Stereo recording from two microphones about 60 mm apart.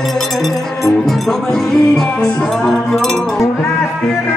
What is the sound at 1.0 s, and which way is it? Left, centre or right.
Music, centre.